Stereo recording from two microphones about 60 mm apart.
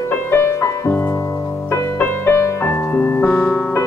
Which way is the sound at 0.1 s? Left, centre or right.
Left.